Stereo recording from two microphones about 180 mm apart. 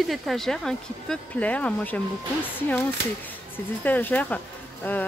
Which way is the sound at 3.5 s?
10° left (ahead or behind).